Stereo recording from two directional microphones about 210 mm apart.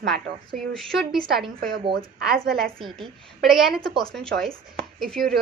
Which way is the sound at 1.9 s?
45° right (ahead or behind).